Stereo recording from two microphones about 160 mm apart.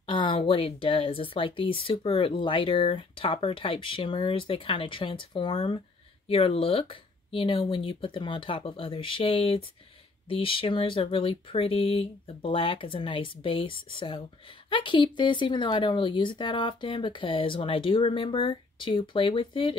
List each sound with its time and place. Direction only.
0.0 s speech: 30° left (ahead or behind)